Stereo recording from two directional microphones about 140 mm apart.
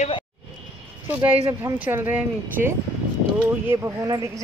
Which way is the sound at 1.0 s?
10° right (ahead or behind).